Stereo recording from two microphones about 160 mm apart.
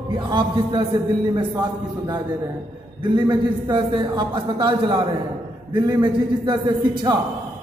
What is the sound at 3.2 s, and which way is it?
A man's voice, 25° right (ahead or behind).